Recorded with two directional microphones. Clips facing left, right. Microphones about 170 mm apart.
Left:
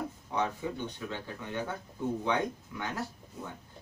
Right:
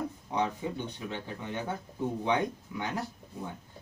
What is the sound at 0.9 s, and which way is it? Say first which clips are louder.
Speech: right 1 dB; 20° right (ahead or behind).